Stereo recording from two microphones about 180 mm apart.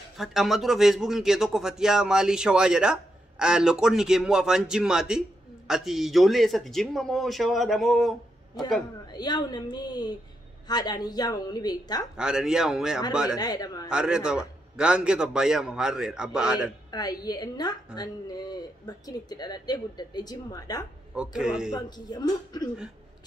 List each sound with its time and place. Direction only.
0.2 s a man's voice: centre (ahead or behind)
9.0 s speech: 20° left (ahead or behind)
12.2 s a man's voice: 5° right (ahead or behind)
13.4 s speech: 20° left (ahead or behind)
13.8 s a man's voice: 5° right (ahead or behind)
16.9 s speech: 20° left (ahead or behind)
21.1 s a man's voice: 5° right (ahead or behind)
21.7 s speech: 20° left (ahead or behind)